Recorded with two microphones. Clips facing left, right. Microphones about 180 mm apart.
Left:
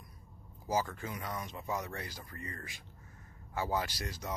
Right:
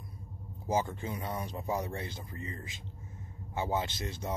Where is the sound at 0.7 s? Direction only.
25° right (ahead or behind).